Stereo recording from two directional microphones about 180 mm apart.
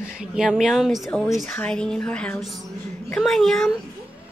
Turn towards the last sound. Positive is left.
turn(degrees=0)  # may be behind; listen again after turning